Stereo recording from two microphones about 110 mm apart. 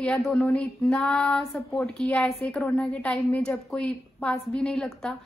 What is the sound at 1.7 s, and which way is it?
A woman's voice, 5° left (ahead or behind).